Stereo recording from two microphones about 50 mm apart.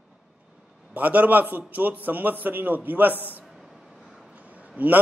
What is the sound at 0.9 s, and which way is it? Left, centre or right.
A man's voice, right.